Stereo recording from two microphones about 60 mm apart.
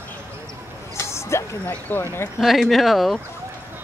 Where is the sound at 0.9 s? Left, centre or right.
Left.